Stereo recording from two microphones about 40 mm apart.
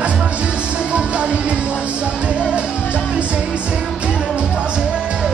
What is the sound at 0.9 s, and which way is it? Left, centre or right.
Music, right.